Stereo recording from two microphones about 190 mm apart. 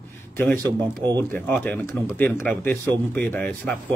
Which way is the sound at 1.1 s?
10° left (ahead or behind).